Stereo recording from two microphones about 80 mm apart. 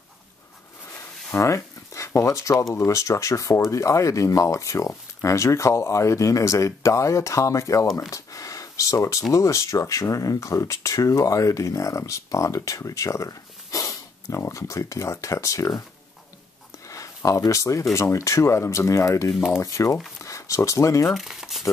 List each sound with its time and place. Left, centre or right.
0.9 s a sound: left
2.7 s speech: left
8.1 s a sound: left
9.3 s speech: left
16.9 s speech: left
21.1 s speech: centre